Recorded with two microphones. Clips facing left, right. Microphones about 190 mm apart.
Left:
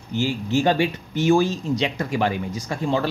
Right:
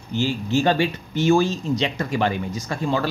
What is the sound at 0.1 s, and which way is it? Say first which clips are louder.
Speech: even; 15° left (ahead or behind).